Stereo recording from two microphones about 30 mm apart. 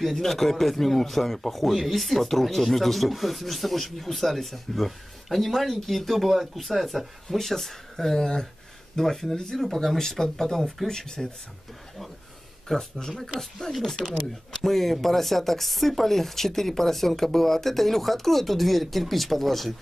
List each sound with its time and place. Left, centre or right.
0.0 s speech: centre
12.6 s speech: centre
14.6 s speech: centre